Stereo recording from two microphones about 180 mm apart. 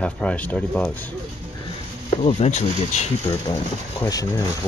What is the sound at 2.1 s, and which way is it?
Speech, 40° left (ahead or behind).